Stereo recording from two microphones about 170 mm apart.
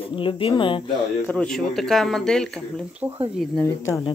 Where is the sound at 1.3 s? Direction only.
5° left (ahead or behind).